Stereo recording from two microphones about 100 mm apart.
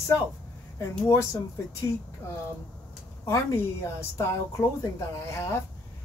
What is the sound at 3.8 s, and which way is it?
Speech, 30° left (ahead or behind).